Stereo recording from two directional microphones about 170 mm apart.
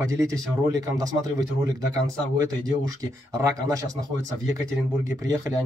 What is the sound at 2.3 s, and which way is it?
Speech, 20° right (ahead or behind).